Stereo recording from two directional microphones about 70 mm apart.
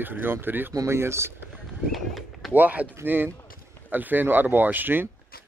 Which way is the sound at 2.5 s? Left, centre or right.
Right.